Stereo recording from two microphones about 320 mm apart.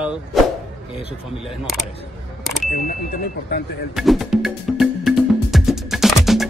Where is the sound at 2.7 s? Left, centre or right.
Left.